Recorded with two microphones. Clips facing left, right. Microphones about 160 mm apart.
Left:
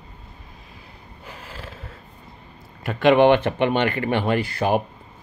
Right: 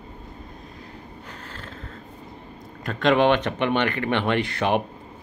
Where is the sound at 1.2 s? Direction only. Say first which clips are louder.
Left 6 dB; 10° left (ahead or behind).